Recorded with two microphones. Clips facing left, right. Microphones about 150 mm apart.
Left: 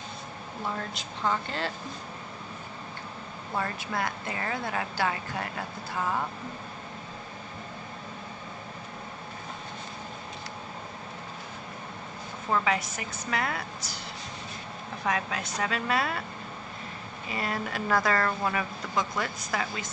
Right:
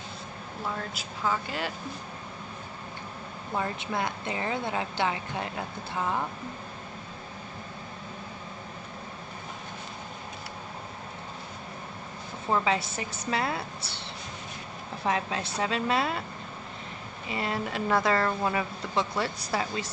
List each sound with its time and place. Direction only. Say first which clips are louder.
0.7 s a woman's voice: even; 5° right (ahead or behind)
3.5 s speech: right 1 dB; 20° right (ahead or behind)
12.4 s speech: right 1 dB; 25° right (ahead or behind)
15.0 s speech: right 1 dB; 25° right (ahead or behind)
17.3 s speech: right 1 dB; 25° right (ahead or behind)